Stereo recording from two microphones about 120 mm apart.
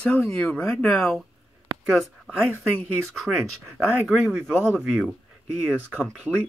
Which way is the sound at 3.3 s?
10° right (ahead or behind).